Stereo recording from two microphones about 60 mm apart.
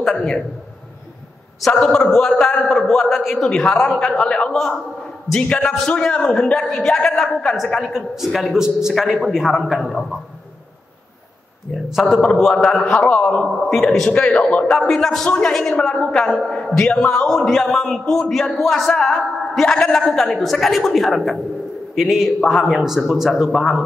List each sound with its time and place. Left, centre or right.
0.0 s a man's voice: centre
1.7 s a man's voice: centre
8.5 s a man's voice: centre
11.7 s a man's voice: centre
12.5 s a man's voice: centre
14.1 s a man's voice: left
14.9 s a man's voice: centre
17.3 s a man's voice: centre